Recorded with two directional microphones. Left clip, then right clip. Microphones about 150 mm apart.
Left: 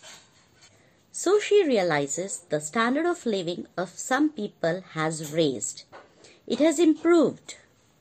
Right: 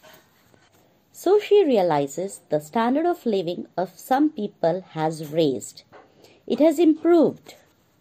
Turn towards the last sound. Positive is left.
turn(degrees=-30)  # may be behind; listen again after turning